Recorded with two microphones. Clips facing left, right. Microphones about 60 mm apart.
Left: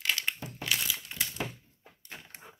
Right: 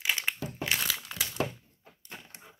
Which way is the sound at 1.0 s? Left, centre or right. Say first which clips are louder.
Right 4 dB; right.